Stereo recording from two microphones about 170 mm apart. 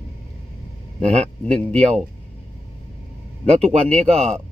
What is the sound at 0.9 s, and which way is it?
Speech, 40° right (ahead or behind).